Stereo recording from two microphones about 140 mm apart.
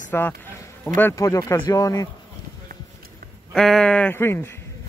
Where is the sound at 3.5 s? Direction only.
5° left (ahead or behind).